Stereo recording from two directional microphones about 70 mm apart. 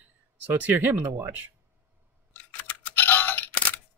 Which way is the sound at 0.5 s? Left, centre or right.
Right.